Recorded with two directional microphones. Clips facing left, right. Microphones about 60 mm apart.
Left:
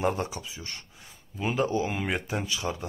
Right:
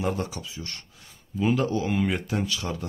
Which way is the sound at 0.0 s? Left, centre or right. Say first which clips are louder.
Left 1 dB; left.